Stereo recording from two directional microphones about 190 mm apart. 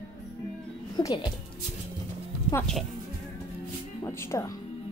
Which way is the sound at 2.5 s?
5° left (ahead or behind).